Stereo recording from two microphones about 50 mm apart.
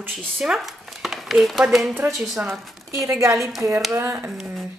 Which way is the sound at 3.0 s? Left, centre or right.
Right.